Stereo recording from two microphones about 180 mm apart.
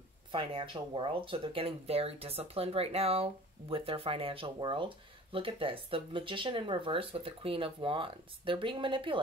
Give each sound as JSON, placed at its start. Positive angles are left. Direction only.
{"t": 0.3, "sound": "speech", "side_deg": -25}